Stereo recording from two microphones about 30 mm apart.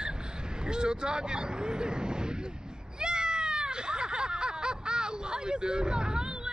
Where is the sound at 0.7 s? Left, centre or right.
Right.